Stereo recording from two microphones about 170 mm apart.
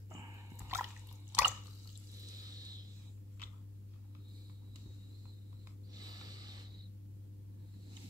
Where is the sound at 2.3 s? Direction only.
20° right (ahead or behind).